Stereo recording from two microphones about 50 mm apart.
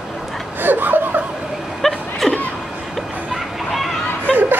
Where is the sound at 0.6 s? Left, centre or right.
Right.